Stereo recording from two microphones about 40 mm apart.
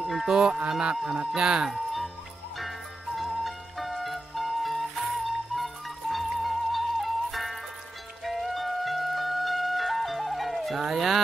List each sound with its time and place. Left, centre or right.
0.0 s honk: centre
1.7 s music: centre